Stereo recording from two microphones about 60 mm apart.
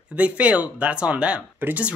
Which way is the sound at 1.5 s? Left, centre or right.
Right.